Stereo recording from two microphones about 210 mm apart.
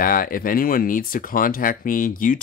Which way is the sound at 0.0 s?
45° left (ahead or behind).